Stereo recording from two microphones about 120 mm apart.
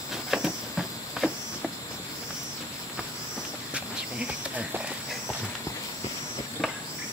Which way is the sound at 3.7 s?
10° right (ahead or behind).